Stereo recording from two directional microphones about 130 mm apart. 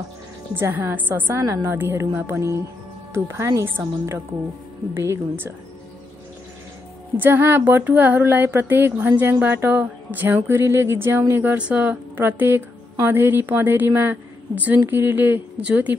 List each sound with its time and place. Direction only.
0.6 s speech: 15° right (ahead or behind)
7.2 s speech: 15° right (ahead or behind)